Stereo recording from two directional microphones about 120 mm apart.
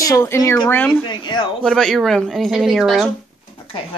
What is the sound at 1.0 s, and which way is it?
Speech, 40° left (ahead or behind).